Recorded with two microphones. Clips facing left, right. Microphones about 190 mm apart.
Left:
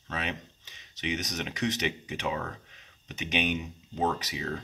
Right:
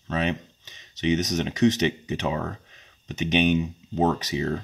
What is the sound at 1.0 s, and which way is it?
Speech, 25° right (ahead or behind).